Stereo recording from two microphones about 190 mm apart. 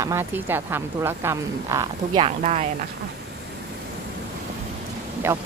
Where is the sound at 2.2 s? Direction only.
35° right (ahead or behind).